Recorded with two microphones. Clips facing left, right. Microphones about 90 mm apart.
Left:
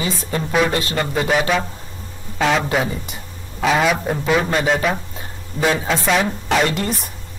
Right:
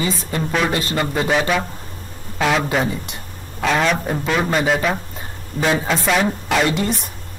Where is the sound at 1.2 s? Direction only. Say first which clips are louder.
Left 1 dB; centre (ahead or behind).